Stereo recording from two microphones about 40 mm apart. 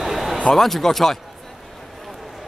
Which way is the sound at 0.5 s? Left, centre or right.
Centre.